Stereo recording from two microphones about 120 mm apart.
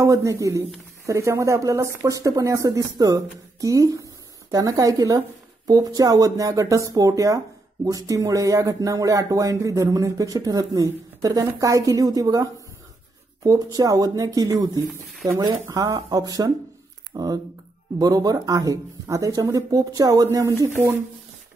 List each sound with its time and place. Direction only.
0.0 s a woman's voice: 25° right (ahead or behind)